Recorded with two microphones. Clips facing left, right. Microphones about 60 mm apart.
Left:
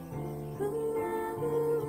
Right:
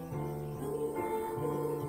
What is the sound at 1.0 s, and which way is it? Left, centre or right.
Music, left.